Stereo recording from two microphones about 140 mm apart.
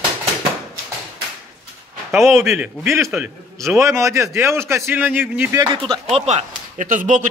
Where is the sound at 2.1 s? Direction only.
Centre (ahead or behind).